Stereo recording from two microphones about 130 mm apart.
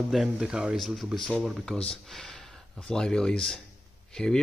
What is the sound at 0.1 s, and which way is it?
Speech, 5° right (ahead or behind).